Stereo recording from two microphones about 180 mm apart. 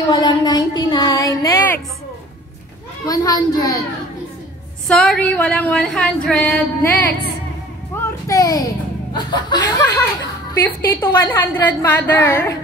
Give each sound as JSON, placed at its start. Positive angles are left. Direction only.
{"t": 0.1, "sound": "a sound", "side_deg": 25}
{"t": 3.1, "sound": "chuckle", "side_deg": 20}
{"t": 4.8, "sound": "a woman's voice", "side_deg": 5}
{"t": 8.0, "sound": "a sound", "side_deg": 20}
{"t": 9.1, "sound": "chuckle", "side_deg": 25}
{"t": 10.6, "sound": "a woman's voice", "side_deg": 10}